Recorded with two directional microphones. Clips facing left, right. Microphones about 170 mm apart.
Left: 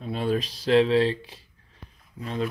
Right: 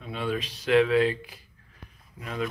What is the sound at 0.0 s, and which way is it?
Speech, 35° left (ahead or behind).